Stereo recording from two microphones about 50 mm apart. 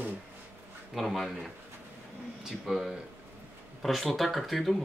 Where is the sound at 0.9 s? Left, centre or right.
Centre.